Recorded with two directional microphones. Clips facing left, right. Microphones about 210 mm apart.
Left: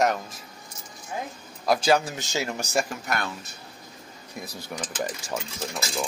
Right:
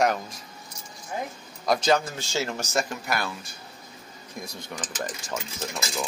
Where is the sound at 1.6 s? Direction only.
5° left (ahead or behind).